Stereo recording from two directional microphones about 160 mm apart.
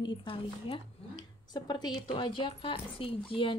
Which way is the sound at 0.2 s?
35° left (ahead or behind).